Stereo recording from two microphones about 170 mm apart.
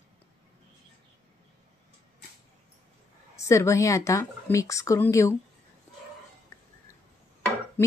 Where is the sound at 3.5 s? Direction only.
15° left (ahead or behind).